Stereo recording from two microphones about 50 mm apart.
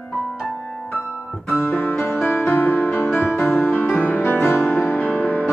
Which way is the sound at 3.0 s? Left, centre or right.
Left.